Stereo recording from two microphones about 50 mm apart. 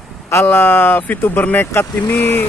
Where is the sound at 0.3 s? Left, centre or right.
Left.